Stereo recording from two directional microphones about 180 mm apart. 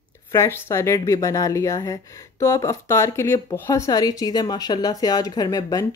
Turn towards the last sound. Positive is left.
turn(degrees=20)  # may be behind; listen again after turning